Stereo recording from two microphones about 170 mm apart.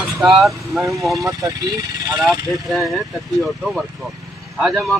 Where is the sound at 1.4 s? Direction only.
20° right (ahead or behind).